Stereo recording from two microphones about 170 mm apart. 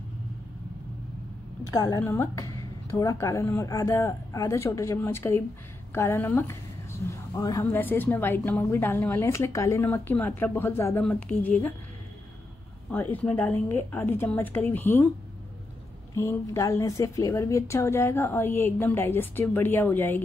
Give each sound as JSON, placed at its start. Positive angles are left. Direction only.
{"t": 1.7, "sound": "a woman's voice", "side_deg": 20}
{"t": 12.9, "sound": "a woman's voice", "side_deg": 10}
{"t": 16.2, "sound": "a woman's voice", "side_deg": 15}